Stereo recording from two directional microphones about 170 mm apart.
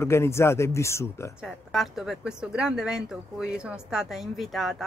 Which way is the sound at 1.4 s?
Centre (ahead or behind).